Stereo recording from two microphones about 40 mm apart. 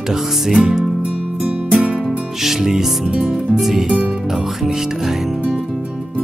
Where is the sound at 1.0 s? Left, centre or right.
Right.